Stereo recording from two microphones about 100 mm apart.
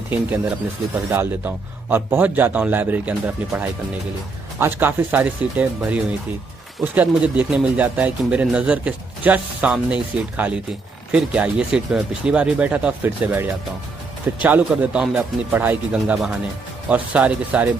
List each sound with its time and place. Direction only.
0.1 s speech: 15° right (ahead or behind)
6.8 s speech: 15° right (ahead or behind)